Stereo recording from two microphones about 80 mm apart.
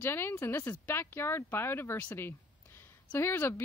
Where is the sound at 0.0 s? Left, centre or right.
Left.